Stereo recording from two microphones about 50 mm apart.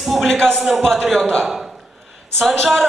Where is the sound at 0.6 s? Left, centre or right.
Centre.